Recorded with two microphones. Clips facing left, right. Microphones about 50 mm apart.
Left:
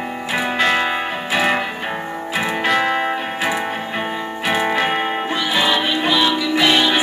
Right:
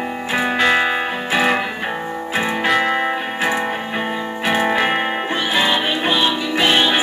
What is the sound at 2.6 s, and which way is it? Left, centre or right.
Music, centre.